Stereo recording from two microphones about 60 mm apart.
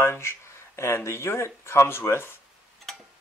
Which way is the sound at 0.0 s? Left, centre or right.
Left.